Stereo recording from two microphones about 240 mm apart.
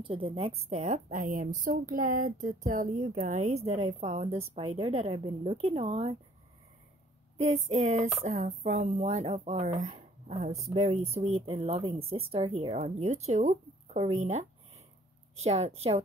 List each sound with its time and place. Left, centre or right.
0.0 s speech: right
7.3 s speech: right
9.8 s a sound: right
10.7 s speech: right
15.4 s speech: right